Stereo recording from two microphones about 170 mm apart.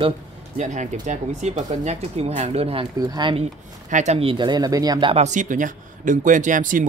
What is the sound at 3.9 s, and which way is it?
Speech, 45° right (ahead or behind).